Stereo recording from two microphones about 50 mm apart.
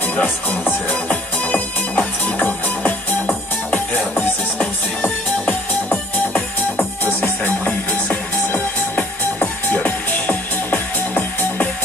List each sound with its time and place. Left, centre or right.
0.1 s music: left